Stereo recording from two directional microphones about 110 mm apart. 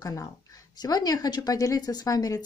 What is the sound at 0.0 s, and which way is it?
Speech, 35° left (ahead or behind).